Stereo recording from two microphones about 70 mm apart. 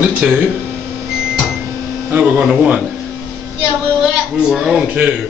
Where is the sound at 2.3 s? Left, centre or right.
Centre.